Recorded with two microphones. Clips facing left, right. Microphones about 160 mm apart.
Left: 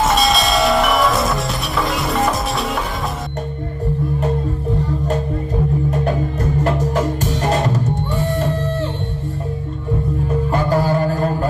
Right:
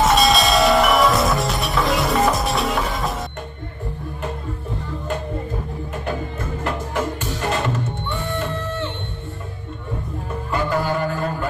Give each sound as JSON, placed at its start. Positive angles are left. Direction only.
{"t": 0.0, "sound": "music", "side_deg": 0}
{"t": 7.4, "sound": "music", "side_deg": 35}
{"t": 10.5, "sound": "a sound", "side_deg": 35}